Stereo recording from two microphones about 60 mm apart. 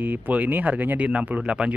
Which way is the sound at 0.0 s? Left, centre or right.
Right.